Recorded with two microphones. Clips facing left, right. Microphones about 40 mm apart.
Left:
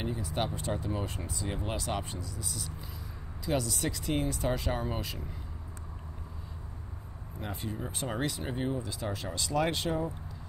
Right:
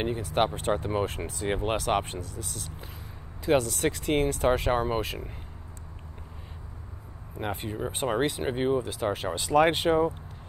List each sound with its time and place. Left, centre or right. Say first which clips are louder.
0.0 s speech: right 7 dB; right
7.3 s speech: right 6 dB; right